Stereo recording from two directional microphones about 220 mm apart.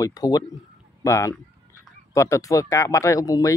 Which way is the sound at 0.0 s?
15° left (ahead or behind).